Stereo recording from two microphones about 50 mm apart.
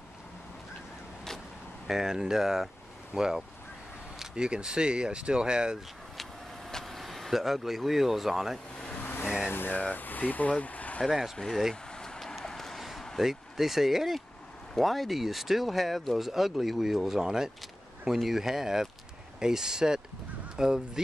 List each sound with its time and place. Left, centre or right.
1.9 s speech: centre
6.7 s speech: centre
8.7 s car: centre
9.0 s vehicle: left
9.5 s speech: left
10.6 s vehicle: left
11.1 s speech: centre
11.3 s speech: centre
11.7 s vehicle: centre
12.4 s a sound: centre
13.2 s speech: centre